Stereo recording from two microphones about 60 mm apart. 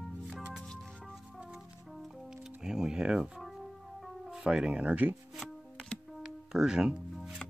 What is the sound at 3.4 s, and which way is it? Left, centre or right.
Music, centre.